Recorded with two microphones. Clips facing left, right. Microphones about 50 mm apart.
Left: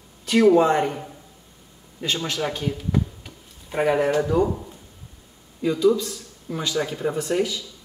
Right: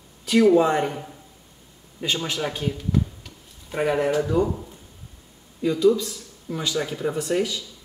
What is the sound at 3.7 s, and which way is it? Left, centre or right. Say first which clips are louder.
A man's voice: left 2 dB; centre.